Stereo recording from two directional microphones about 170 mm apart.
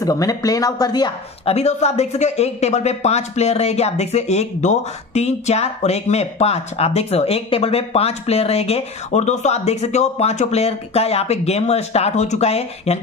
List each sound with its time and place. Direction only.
0.0 s speech: 20° left (ahead or behind)
1.5 s speech: 40° left (ahead or behind)